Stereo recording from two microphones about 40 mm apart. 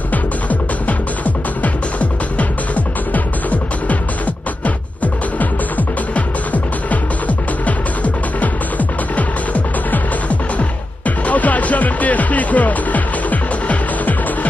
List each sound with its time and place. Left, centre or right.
0.1 s music: left